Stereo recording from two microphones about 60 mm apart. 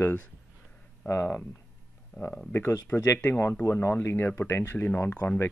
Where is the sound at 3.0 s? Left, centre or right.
Left.